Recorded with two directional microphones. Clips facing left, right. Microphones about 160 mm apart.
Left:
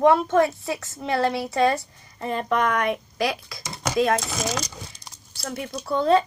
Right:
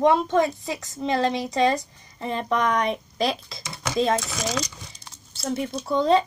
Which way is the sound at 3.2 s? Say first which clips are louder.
Right 2 dB; 25° right (ahead or behind).